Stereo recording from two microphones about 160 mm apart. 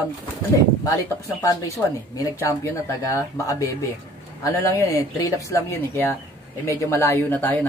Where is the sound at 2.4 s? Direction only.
20° left (ahead or behind).